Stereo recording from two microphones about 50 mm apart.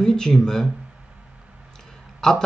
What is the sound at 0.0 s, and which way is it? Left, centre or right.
Speech, centre.